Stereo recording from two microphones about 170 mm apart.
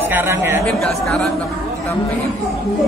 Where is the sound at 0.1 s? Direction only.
15° right (ahead or behind).